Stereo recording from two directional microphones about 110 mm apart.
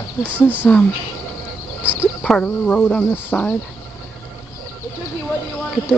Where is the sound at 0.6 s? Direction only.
10° left (ahead or behind).